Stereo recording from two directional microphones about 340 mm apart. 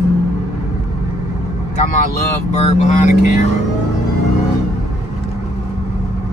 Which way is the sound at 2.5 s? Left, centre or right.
Centre.